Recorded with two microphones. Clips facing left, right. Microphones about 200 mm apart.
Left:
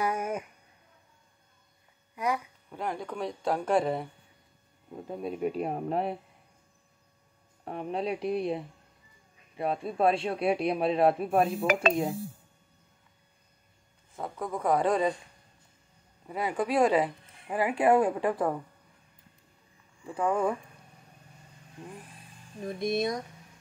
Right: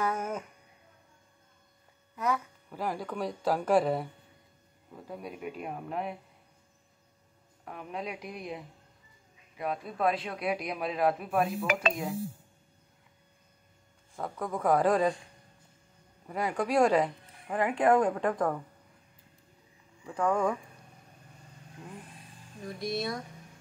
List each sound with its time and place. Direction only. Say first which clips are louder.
0.0 s a sound: left 2 dB; 10° left (ahead or behind)
2.1 s a sound: even; 10° left (ahead or behind)
2.7 s speech: even; centre (ahead or behind)
4.9 s a man's voice: left 6 dB; 25° left (ahead or behind)
7.6 s a man's voice: left 6 dB; 30° left (ahead or behind)
11.6 s dishes: left 4 dB; 45° left (ahead or behind)
14.1 s speech: even; centre (ahead or behind)
16.3 s speech: left 1 dB; centre (ahead or behind)
20.1 s speech: even; 5° left (ahead or behind)
22.7 s a man's voice: left 5 dB; 20° left (ahead or behind)